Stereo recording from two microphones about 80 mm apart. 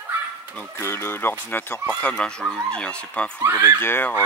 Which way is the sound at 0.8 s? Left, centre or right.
Left.